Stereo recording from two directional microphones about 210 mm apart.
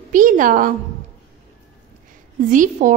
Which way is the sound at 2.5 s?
40° right (ahead or behind).